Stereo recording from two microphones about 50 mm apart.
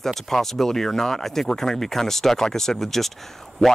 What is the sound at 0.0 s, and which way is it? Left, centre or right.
Speech, centre.